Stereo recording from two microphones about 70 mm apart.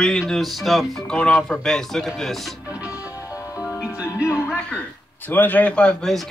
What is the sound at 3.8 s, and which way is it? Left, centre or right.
Music, centre.